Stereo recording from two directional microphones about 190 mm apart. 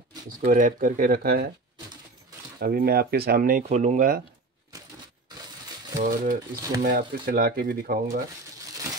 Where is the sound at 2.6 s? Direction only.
55° right (ahead or behind).